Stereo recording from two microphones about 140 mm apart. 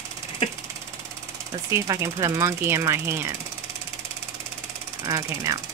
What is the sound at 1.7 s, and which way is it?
Speech, 25° right (ahead or behind).